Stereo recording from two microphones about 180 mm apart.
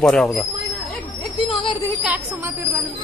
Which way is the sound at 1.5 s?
30° left (ahead or behind).